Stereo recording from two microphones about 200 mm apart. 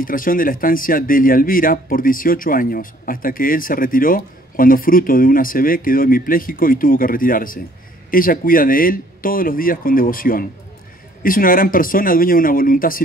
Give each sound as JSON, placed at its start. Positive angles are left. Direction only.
{"t": 0.0, "sound": "speech", "side_deg": 45}